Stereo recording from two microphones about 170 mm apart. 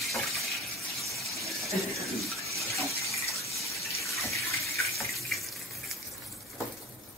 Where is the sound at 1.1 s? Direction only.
Centre (ahead or behind).